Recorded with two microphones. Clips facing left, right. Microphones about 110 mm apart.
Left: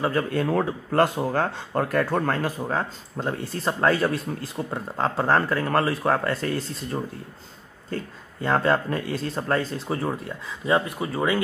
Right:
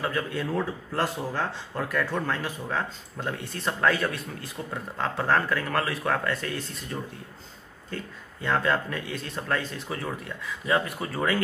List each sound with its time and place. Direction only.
0.2 s speech: 35° left (ahead or behind)
0.5 s speech: 55° left (ahead or behind); by 10.8 s 30° left (ahead or behind)
10.9 s speech: 15° left (ahead or behind)